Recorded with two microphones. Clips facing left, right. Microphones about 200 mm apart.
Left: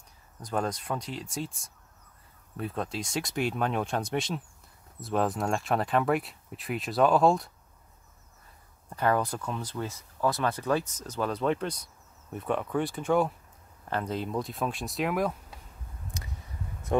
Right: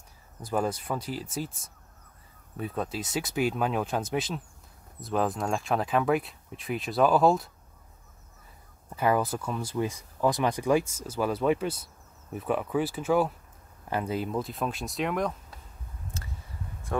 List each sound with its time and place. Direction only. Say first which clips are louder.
0.4 s speech: right 2 dB; 5° right (ahead or behind)
8.9 s speech: right 1 dB; 5° right (ahead or behind)
16.1 s a sound: even; 15° left (ahead or behind)